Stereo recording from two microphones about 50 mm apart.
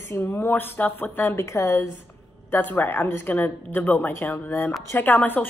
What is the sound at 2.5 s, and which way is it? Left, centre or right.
A woman's voice, left.